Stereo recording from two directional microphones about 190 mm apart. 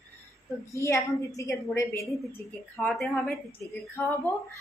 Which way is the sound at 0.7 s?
15° left (ahead or behind).